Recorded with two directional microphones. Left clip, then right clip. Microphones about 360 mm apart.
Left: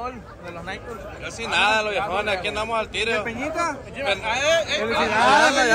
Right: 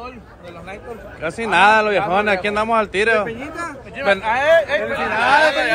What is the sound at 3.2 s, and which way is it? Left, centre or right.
Speech, centre.